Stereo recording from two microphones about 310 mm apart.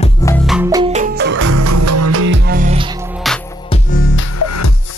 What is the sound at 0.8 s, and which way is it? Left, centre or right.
Music, right.